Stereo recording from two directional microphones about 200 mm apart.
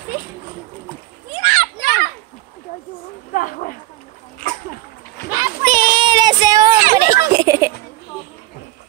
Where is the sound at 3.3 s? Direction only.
45° left (ahead or behind).